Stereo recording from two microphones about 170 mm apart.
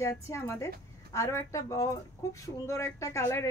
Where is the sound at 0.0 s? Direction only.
15° left (ahead or behind).